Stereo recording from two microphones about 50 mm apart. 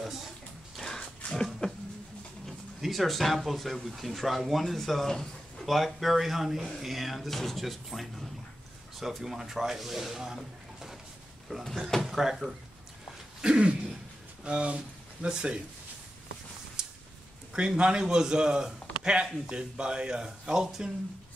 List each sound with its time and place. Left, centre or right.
0.7 s a sound: centre
2.4 s speech: centre
13.4 s throat clearing: centre
14.4 s speech: right
17.5 s a man's voice: centre
20.6 s speech: centre